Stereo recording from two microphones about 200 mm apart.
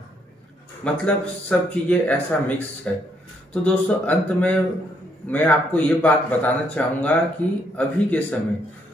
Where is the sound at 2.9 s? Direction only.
5° left (ahead or behind).